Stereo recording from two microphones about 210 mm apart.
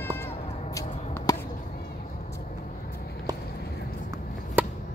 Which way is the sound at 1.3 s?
20° left (ahead or behind).